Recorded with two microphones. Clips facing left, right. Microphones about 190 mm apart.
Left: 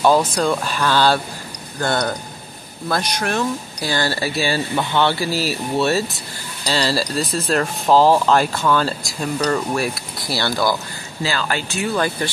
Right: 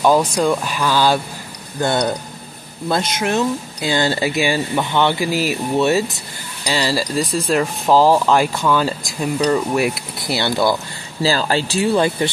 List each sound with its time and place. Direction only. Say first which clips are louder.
0.4 s speech: right 2 dB; 15° right (ahead or behind)
11.2 s speech: right 5 dB; 35° right (ahead or behind)